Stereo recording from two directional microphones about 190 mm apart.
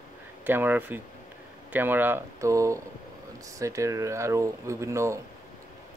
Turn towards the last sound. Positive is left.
turn(degrees=-15)  # may be behind; listen again after turning